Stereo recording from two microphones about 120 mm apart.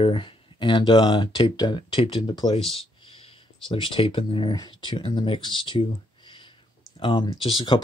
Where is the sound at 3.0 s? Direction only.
50° left (ahead or behind).